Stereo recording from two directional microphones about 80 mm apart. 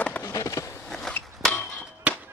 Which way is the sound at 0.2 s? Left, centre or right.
Left.